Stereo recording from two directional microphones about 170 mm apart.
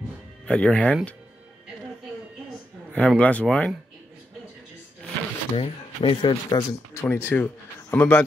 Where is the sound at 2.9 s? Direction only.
5° left (ahead or behind).